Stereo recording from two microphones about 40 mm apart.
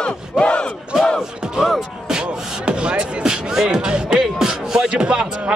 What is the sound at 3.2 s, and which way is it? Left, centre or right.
Music, centre.